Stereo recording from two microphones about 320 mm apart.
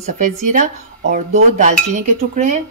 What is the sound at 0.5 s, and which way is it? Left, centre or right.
Speech, right.